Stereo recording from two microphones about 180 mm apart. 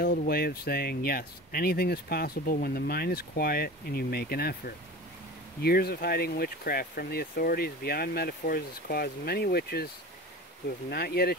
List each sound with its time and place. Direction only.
0.0 s speech: 55° left (ahead or behind)
10.9 s speech: 60° left (ahead or behind)